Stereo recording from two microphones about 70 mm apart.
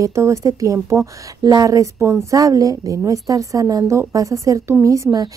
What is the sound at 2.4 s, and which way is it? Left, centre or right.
A woman's voice, right.